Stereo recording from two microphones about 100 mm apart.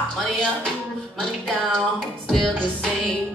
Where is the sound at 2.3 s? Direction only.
Centre (ahead or behind).